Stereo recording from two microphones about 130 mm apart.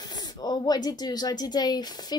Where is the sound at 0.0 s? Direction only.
30° left (ahead or behind).